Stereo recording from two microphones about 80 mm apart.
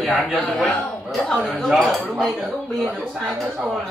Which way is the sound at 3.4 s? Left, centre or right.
Centre.